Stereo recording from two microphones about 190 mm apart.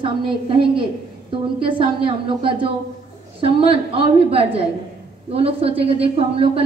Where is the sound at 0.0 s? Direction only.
25° right (ahead or behind).